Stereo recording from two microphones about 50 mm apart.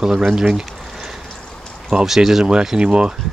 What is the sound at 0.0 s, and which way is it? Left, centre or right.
Speech, centre.